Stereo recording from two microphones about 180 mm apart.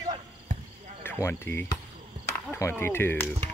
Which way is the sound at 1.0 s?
10° left (ahead or behind).